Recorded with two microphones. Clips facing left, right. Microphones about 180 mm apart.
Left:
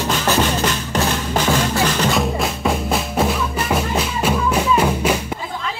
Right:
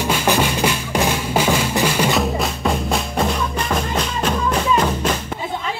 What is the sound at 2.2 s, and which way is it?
Music, centre (ahead or behind).